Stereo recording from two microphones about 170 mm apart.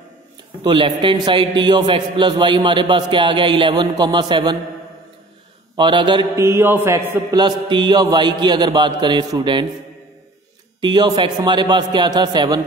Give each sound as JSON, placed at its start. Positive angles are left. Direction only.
{"t": 0.7, "sound": "mantra", "side_deg": -30}
{"t": 5.8, "sound": "mantra", "side_deg": -30}
{"t": 10.8, "sound": "mantra", "side_deg": -25}